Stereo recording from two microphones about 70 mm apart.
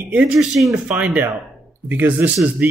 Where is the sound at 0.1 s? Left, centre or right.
Centre.